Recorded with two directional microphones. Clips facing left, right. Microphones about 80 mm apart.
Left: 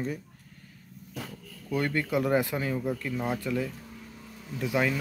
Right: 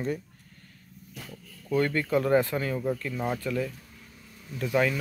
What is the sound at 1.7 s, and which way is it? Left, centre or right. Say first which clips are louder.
Speech: right 3 dB; centre.